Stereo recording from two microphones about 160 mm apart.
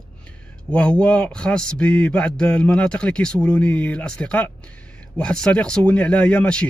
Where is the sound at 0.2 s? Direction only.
5° left (ahead or behind).